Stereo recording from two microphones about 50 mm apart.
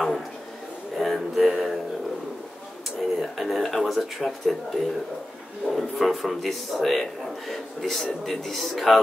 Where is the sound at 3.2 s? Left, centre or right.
Centre.